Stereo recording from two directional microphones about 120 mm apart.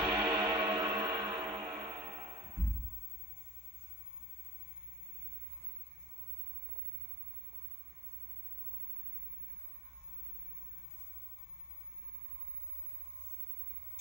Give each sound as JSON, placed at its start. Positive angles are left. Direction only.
{"t": 0.1, "sound": "music", "side_deg": -20}